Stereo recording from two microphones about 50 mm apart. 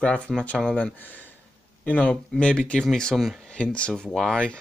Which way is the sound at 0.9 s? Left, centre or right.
Left.